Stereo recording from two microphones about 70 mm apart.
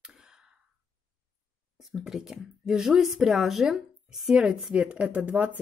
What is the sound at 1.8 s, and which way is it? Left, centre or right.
A woman's voice, centre.